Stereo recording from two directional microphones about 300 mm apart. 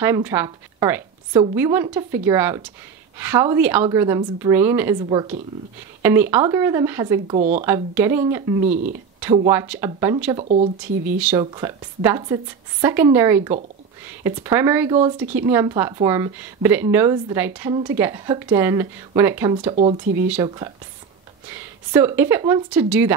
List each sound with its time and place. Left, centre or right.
0.0 s a woman's voice: centre
6.3 s a woman's voice: centre
7.3 s speech: right
7.6 s a woman's voice: centre
10.4 s speech: right
10.8 s a woman's voice: centre
19.7 s a woman's voice: right